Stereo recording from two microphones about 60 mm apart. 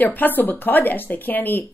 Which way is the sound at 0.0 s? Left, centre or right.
Left.